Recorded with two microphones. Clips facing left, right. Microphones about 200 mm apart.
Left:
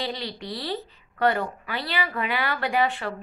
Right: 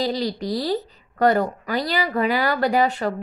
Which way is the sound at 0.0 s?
40° right (ahead or behind).